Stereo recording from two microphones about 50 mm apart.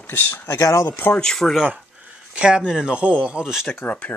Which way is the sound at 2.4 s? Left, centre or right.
Centre.